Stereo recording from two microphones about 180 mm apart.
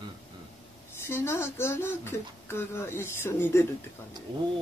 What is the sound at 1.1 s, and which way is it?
Speech, 15° left (ahead or behind).